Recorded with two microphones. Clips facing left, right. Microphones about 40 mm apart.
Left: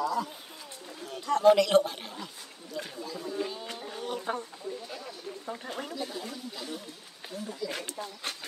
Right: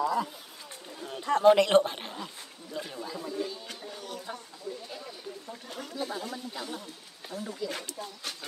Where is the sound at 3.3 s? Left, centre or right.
Left.